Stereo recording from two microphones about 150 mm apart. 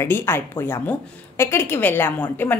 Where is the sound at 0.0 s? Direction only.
15° left (ahead or behind).